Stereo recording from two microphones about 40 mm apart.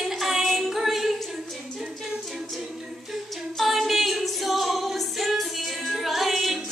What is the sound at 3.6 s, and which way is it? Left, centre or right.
Singing, centre.